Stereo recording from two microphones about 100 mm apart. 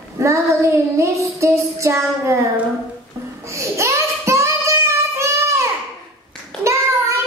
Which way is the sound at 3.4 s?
30° right (ahead or behind).